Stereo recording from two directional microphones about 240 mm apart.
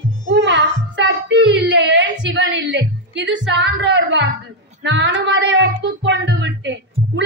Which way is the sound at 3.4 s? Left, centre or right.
Right.